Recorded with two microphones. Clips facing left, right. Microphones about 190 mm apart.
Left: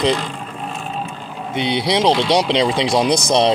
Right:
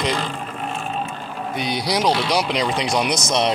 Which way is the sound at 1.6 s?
25° left (ahead or behind).